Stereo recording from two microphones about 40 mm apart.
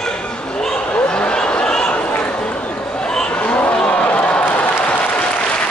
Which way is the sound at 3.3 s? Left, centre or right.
Left.